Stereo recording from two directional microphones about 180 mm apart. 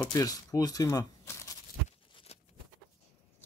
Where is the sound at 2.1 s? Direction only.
35° left (ahead or behind).